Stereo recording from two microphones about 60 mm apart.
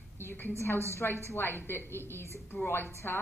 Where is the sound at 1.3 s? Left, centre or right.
Left.